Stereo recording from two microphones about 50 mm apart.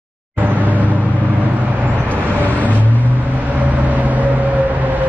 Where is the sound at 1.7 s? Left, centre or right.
Right.